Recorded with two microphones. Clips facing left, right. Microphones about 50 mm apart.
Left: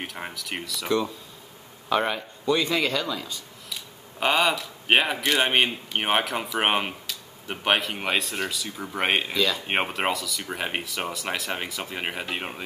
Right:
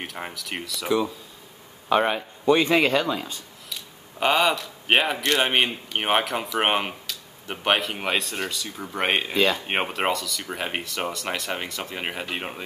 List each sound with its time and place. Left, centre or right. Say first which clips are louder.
0.0 s a man's voice: right 1 dB; centre
1.9 s a man's voice: right 3 dB; centre
2.4 s a man's voice: right 5 dB; right
4.2 s a man's voice: right 2 dB; centre
9.3 s a man's voice: right 3 dB; right
9.7 s a man's voice: right 1 dB; centre